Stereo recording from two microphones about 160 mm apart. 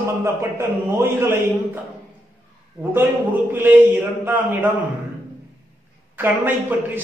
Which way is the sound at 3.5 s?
10° right (ahead or behind).